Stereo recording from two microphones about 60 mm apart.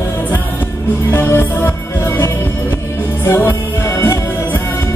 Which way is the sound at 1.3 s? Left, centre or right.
Left.